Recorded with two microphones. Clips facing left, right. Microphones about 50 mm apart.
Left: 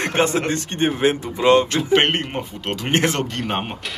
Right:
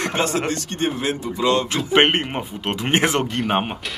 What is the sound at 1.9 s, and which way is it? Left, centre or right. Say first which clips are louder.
Speech: right 1 dB; centre.